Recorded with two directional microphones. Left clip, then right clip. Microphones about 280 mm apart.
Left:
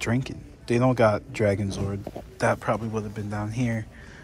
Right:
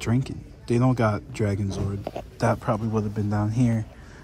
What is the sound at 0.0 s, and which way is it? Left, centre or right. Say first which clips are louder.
Speech: even; centre.